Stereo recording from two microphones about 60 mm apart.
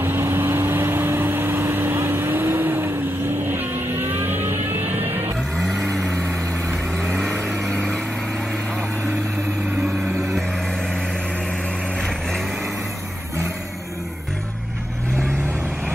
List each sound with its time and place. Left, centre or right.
0.0 s vehicle: right
5.6 s vehicle: centre
9.8 s a sound: centre
12.0 s vehicle: centre